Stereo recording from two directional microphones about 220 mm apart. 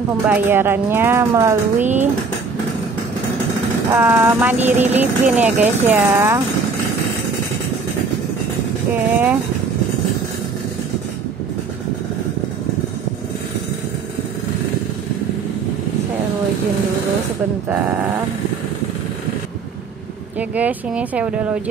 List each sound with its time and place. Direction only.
0.3 s speech: 10° right (ahead or behind)
1.8 s speech: 35° right (ahead or behind)
3.9 s speech: 10° right (ahead or behind)
8.9 s speech: 10° right (ahead or behind)
20.3 s speech: 5° right (ahead or behind)